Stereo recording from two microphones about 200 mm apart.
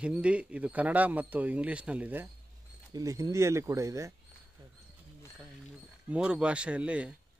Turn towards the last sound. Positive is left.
turn(degrees=-5)  # may be behind; listen again after turning